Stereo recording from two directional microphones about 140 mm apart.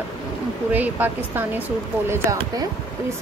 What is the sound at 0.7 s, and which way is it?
Speech, 10° right (ahead or behind).